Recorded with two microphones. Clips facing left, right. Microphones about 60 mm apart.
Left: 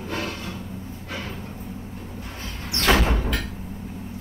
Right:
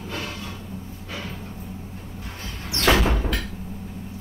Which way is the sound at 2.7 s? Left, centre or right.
Left.